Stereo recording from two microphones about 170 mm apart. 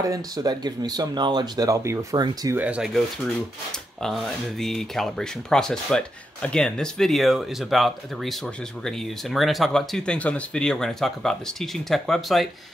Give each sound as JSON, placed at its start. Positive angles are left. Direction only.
{"t": 0.0, "sound": "speech", "side_deg": -20}
{"t": 2.5, "sound": "speech", "side_deg": -10}
{"t": 4.0, "sound": "speech", "side_deg": 0}